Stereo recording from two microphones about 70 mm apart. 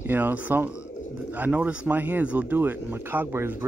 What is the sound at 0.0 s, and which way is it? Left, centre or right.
Speech, right.